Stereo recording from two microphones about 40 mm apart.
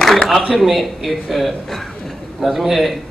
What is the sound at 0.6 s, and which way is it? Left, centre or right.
A man's voice, centre.